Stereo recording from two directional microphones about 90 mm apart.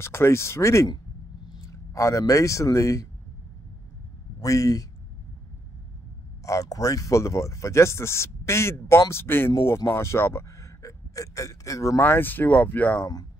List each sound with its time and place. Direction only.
0.0 s speech: 30° left (ahead or behind)
4.4 s speech: 40° left (ahead or behind)
6.4 s speech: 40° left (ahead or behind)
12.0 s speech: 20° left (ahead or behind)